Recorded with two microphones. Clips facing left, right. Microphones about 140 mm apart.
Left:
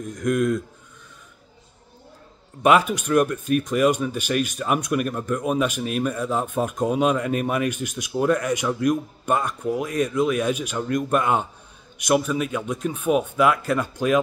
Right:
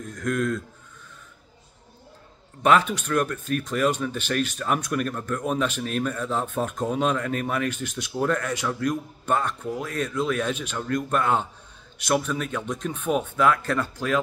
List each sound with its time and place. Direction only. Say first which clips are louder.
0.0 s speech: left 4 dB; 15° left (ahead or behind)
2.6 s speech: left 2 dB; 10° left (ahead or behind)